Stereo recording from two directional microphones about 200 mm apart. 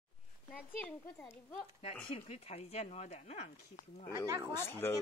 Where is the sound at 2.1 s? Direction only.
30° left (ahead or behind).